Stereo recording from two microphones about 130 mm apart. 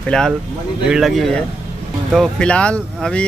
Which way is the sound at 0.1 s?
5° left (ahead or behind).